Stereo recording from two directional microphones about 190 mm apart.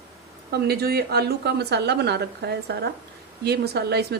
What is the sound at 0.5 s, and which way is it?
A woman's voice, 55° right (ahead or behind).